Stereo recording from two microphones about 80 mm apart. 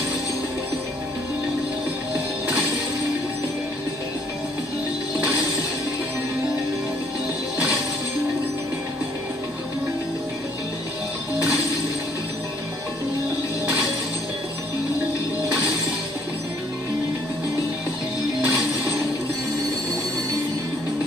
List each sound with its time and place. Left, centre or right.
18.4 s music: right